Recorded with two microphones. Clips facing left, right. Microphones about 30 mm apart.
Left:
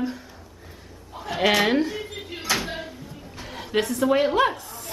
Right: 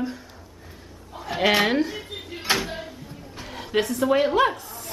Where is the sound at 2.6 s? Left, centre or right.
Centre.